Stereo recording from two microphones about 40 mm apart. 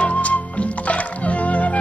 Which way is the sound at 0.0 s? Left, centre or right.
Left.